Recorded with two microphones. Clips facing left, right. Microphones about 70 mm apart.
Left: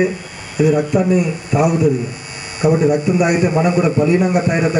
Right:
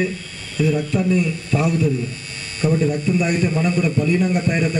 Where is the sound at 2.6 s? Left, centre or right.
Left.